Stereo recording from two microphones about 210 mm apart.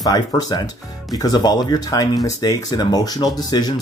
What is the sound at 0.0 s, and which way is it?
Speech, 20° left (ahead or behind).